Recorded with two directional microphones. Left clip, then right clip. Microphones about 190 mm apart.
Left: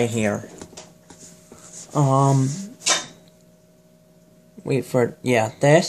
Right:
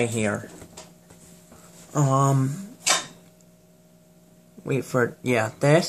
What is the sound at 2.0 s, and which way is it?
Speech, 10° left (ahead or behind).